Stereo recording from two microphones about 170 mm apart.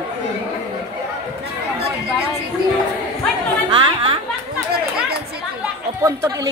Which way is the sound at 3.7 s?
30° right (ahead or behind).